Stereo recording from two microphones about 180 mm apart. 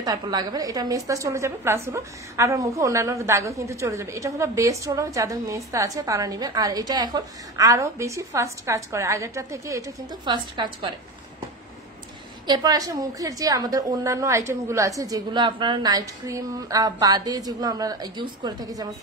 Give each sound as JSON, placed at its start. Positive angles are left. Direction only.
{"t": 0.0, "sound": "a woman's voice", "side_deg": -20}
{"t": 12.4, "sound": "a woman's voice", "side_deg": -20}